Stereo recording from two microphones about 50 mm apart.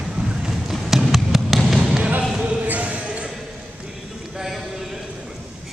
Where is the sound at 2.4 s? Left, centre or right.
Right.